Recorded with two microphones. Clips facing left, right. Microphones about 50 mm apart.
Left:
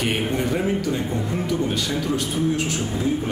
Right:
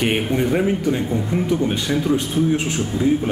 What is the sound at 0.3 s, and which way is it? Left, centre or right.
A man's voice, centre.